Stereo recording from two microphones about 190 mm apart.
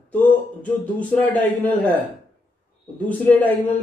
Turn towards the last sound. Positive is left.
turn(degrees=10)  # may be behind; listen again after turning